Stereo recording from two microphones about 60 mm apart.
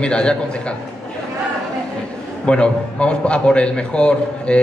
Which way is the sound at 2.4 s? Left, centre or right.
Centre.